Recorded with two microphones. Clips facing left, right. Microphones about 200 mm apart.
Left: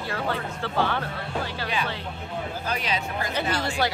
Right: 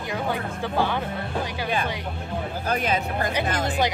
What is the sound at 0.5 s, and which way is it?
Speech, 15° right (ahead or behind).